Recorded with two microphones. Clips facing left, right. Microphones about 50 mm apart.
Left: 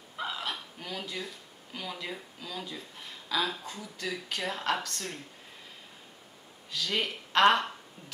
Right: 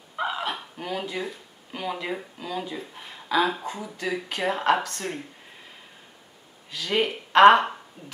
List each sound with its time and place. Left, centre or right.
0.1 s speech: right
6.7 s speech: centre